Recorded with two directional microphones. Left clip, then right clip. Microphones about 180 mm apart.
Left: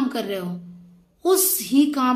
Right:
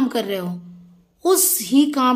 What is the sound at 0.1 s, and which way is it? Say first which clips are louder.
A woman's voice: right 4 dB; 30° right (ahead or behind).